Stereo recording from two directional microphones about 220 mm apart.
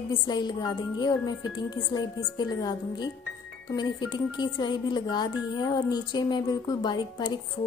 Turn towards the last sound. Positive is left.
turn(degrees=20)  # may be behind; listen again after turning